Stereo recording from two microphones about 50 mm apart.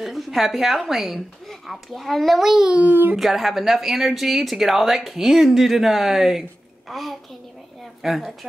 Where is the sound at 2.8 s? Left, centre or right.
Right.